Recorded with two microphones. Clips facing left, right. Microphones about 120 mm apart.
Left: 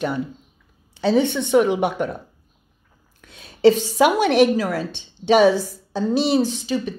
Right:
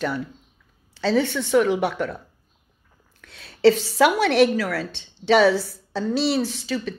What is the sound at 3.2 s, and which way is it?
A woman's voice, 15° left (ahead or behind).